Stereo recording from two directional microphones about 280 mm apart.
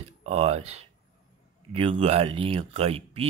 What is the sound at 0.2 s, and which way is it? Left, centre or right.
Speech, right.